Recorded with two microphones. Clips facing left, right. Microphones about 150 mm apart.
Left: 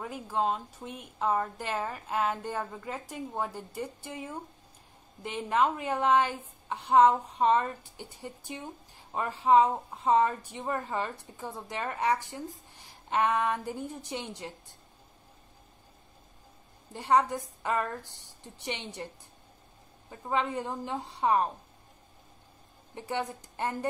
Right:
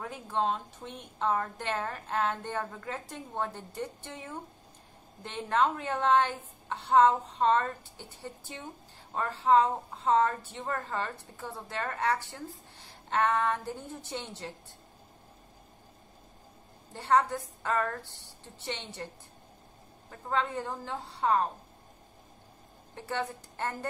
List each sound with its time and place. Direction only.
0.0 s a woman's voice: 10° left (ahead or behind)
16.9 s a woman's voice: 15° left (ahead or behind)
20.1 s a woman's voice: 15° left (ahead or behind)
22.9 s a woman's voice: 15° left (ahead or behind)